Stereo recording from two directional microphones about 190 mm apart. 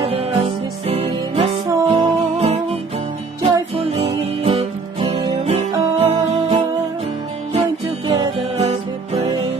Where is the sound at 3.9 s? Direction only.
30° right (ahead or behind).